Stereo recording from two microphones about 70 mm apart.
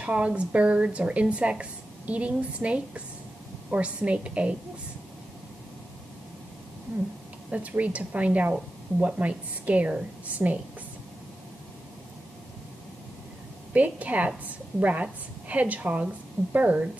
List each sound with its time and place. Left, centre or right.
0.0 s a woman's voice: centre
7.5 s a woman's voice: right
13.7 s a woman's voice: right